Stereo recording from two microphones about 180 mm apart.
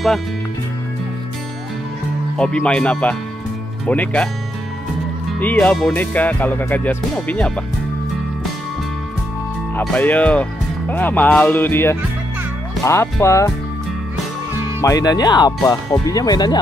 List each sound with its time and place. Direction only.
2.3 s speech: 5° left (ahead or behind)
5.4 s speech: 10° left (ahead or behind)
9.8 s speech: 10° left (ahead or behind)
14.8 s speech: 20° left (ahead or behind)